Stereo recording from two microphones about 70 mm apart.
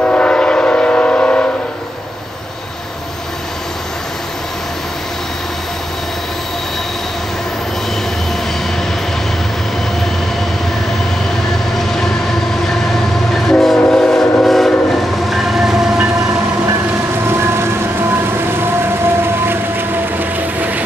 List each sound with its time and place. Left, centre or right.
0.0 s train: centre
13.3 s train: centre
17.3 s train: right
18.5 s vehicle: right